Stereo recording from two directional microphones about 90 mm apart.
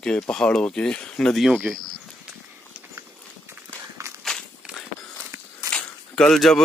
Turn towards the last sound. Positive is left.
turn(degrees=5)  # may be behind; listen again after turning